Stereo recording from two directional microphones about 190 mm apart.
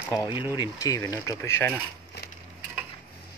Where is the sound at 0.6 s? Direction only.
20° left (ahead or behind).